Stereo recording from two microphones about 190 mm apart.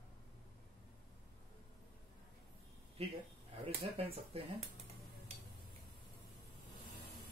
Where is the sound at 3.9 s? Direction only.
30° right (ahead or behind).